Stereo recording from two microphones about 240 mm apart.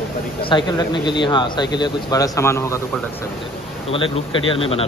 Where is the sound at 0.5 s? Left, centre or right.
Centre.